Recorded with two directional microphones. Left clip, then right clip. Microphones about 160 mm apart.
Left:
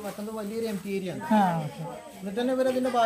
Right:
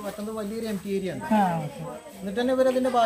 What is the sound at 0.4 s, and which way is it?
Speech, 5° left (ahead or behind).